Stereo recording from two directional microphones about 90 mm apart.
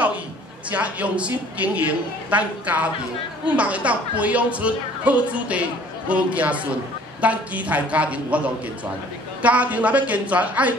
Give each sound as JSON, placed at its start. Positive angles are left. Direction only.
{"t": 0.7, "sound": "a woman's voice", "side_deg": -15}
{"t": 9.4, "sound": "a woman's voice", "side_deg": -15}